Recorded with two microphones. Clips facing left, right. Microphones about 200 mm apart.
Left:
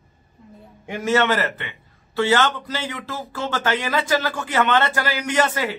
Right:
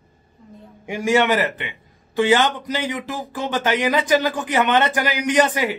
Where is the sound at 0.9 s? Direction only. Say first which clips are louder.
Right 2 dB; 15° right (ahead or behind).